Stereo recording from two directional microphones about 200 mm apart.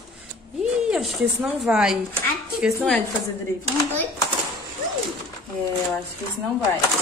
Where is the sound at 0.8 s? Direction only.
5° right (ahead or behind).